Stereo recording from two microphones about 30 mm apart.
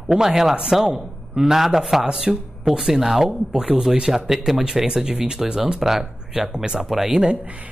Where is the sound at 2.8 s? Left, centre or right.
Centre.